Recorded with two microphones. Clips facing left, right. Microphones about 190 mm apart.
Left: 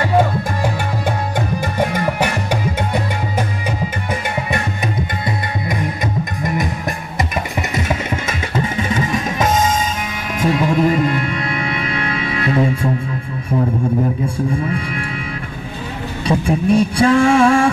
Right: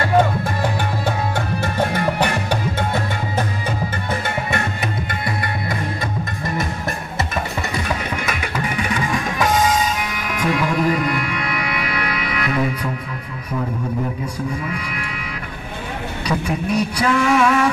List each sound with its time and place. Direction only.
1.6 s music: 10° left (ahead or behind)
8.3 s music: 25° left (ahead or behind)
16.3 s a sound: 30° left (ahead or behind)